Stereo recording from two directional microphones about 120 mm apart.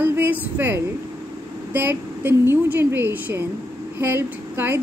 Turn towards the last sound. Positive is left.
turn(degrees=-20)  # may be behind; listen again after turning